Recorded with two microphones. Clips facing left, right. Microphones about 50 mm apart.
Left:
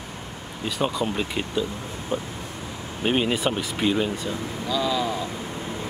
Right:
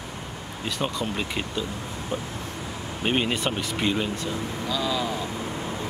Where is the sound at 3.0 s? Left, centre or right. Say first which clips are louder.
Left 2 dB; centre.